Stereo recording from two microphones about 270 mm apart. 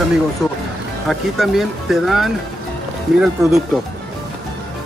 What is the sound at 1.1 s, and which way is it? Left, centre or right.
Speech, centre.